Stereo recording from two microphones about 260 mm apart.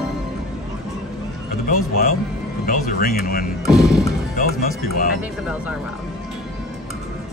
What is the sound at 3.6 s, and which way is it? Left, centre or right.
Speech, centre.